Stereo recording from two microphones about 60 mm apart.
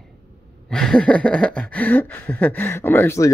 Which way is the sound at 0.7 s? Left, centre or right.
Centre.